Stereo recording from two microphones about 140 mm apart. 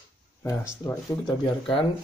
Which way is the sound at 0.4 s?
20° left (ahead or behind).